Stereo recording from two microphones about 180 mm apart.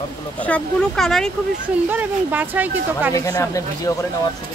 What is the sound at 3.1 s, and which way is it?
Speech, 20° left (ahead or behind).